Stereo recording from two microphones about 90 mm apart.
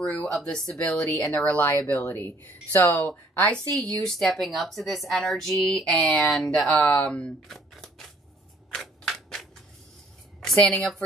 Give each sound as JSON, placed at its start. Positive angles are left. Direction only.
{"t": 0.0, "sound": "speech", "side_deg": 5}
{"t": 1.8, "sound": "speech", "side_deg": 30}
{"t": 3.7, "sound": "a woman's voice", "side_deg": 5}
{"t": 8.6, "sound": "scissors", "side_deg": 5}
{"t": 10.7, "sound": "speech", "side_deg": 5}